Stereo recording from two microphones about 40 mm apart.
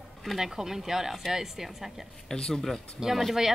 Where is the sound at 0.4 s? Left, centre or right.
Centre.